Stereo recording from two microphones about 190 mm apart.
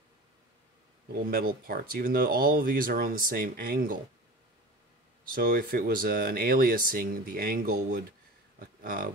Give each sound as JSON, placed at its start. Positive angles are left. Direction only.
{"t": 1.3, "sound": "speech", "side_deg": -50}
{"t": 5.3, "sound": "speech", "side_deg": -50}